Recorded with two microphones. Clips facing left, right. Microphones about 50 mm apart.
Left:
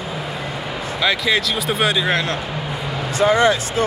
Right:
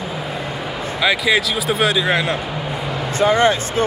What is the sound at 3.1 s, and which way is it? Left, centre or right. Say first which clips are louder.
Speech: even; right.